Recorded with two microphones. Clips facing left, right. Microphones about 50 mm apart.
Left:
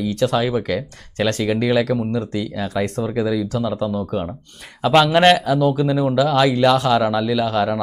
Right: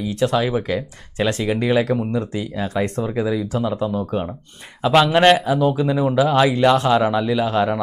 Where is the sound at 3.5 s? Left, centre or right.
Centre.